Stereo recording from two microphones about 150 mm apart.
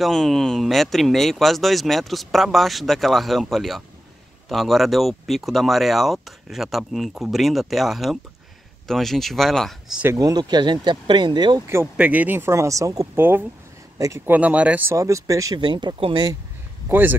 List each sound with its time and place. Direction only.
0.0 s speech: centre (ahead or behind)
10.0 s speech: 25° right (ahead or behind)
11.6 s speech: 15° right (ahead or behind)
14.3 s speech: 10° right (ahead or behind); by 16.3 s 30° right (ahead or behind)
16.9 s speech: 15° right (ahead or behind)